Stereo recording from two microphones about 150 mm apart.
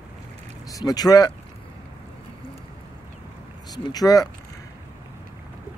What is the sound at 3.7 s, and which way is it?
Speech, 25° left (ahead or behind).